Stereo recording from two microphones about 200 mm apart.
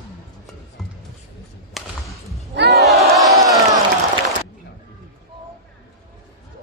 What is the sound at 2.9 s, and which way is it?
Crowd, centre (ahead or behind).